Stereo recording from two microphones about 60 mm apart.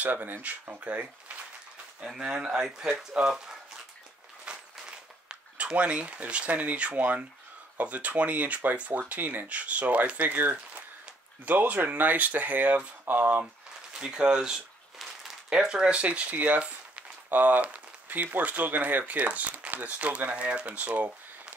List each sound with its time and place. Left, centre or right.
0.0 s speech: right
2.0 s speech: centre
4.5 s a sound: centre
7.7 s speech: right
13.9 s speech: centre